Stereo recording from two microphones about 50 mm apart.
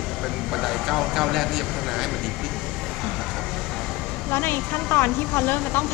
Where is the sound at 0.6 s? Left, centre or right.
Centre.